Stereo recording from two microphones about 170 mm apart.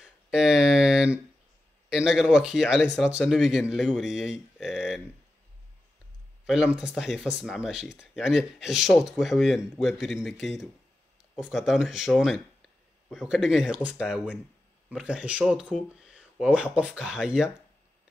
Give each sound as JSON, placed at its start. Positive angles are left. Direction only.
{"t": 0.0, "sound": "a sound", "side_deg": -5}
{"t": 1.9, "sound": "speech", "side_deg": -5}
{"t": 6.4, "sound": "speech", "side_deg": -5}